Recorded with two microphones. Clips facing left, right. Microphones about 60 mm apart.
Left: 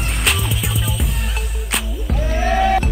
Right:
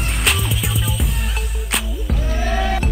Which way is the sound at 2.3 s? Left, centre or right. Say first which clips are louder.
Left 6 dB; left.